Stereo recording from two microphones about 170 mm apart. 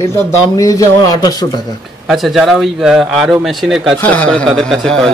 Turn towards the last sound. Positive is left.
turn(degrees=5)  # may be behind; listen again after turning